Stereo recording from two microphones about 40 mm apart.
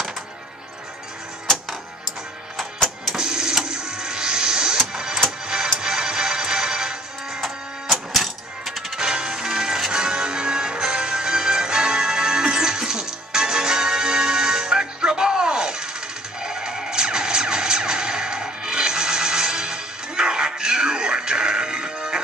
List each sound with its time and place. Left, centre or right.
2.5 s music: centre
3.2 s printer: centre
5.8 s music: centre
8.1 s coin: centre
9.0 s music: centre